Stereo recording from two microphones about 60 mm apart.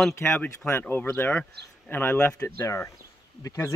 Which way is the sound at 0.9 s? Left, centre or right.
Left.